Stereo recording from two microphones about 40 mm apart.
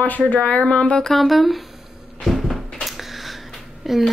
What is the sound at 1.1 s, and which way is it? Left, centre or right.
Speech, centre.